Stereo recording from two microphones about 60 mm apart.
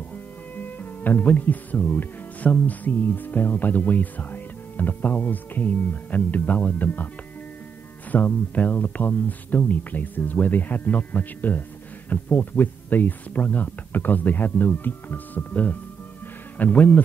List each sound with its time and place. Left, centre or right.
0.1 s speech: left
8.1 s speech: left